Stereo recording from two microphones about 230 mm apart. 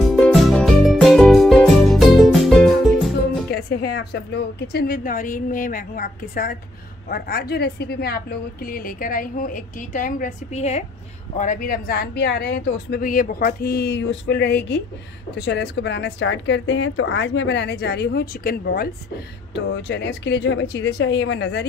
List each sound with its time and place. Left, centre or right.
0.1 s music: centre
3.4 s a woman's voice: left